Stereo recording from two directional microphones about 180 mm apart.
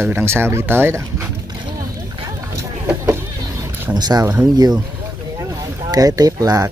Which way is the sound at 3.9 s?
20° right (ahead or behind).